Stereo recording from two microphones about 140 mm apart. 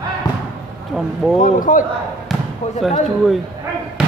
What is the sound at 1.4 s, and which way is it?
Speech, 70° left (ahead or behind).